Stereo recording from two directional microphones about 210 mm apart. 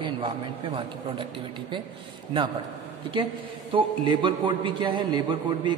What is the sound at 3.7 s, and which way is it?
A man's voice, 20° right (ahead or behind).